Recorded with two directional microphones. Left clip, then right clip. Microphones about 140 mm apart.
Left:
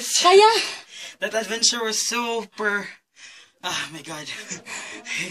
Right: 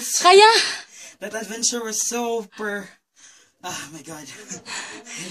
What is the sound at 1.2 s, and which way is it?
Speech, 25° right (ahead or behind).